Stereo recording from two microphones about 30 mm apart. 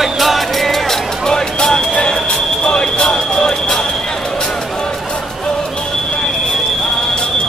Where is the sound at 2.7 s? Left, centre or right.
Left.